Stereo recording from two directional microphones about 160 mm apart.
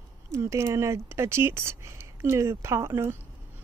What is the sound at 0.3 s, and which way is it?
Speech, 15° right (ahead or behind).